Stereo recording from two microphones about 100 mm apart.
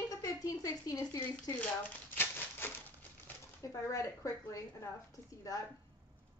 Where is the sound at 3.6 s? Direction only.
30° left (ahead or behind).